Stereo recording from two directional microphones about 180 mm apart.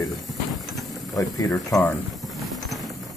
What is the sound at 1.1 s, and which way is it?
Speech, 20° left (ahead or behind).